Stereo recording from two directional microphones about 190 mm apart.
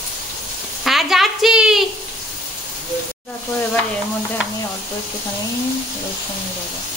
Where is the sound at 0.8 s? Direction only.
Centre (ahead or behind).